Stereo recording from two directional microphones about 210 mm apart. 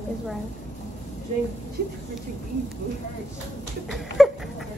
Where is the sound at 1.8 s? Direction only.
50° right (ahead or behind).